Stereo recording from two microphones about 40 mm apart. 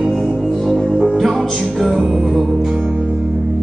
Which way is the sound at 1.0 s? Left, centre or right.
Centre.